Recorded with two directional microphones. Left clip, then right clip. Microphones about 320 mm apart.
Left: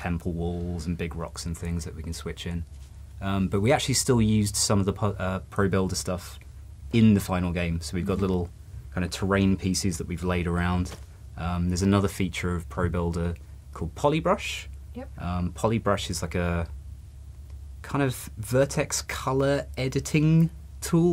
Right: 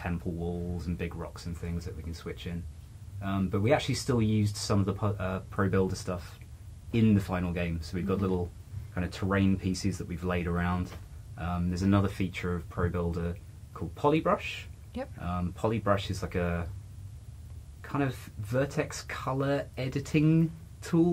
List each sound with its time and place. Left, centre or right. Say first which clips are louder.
0.0 s speech: left 4 dB; left
17.8 s speech: left 5 dB; left